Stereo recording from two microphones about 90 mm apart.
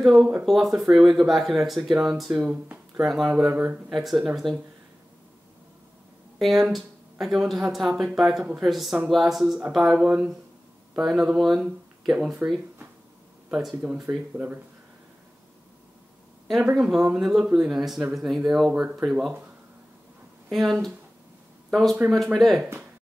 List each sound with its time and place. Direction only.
0.0 s speech: 5° right (ahead or behind)
2.3 s speech: 15° right (ahead or behind)
3.4 s speech: 20° right (ahead or behind)
3.9 s speech: centre (ahead or behind)
6.4 s speech: centre (ahead or behind)
13.5 s speech: 5° right (ahead or behind)
16.7 s speech: 5° right (ahead or behind)
18.9 s speech: 15° right (ahead or behind)
20.4 s speech: centre (ahead or behind)